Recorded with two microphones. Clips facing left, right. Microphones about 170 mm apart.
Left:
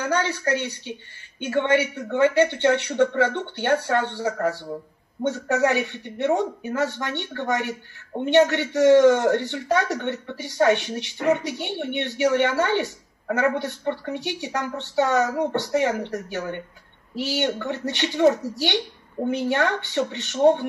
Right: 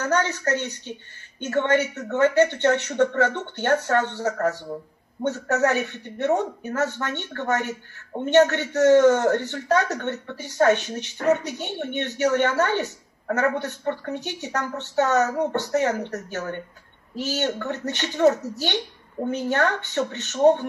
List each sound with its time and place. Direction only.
0.0 s speech: 10° left (ahead or behind)